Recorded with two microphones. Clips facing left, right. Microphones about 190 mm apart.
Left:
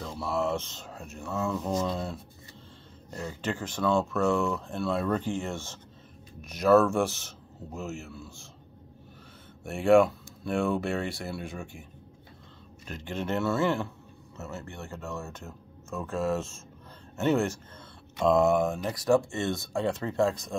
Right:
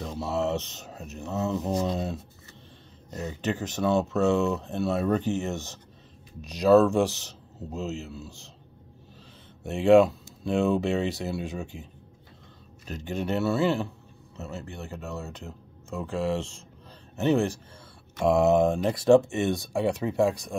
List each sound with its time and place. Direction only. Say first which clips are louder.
0.0 s speech: right 2 dB; 20° right (ahead or behind)
9.7 s speech: right 3 dB; 20° right (ahead or behind)
13.0 s speech: right 2 dB; 15° right (ahead or behind)